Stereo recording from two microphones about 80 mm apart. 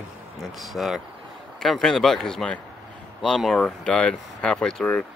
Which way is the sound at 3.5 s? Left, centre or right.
Centre.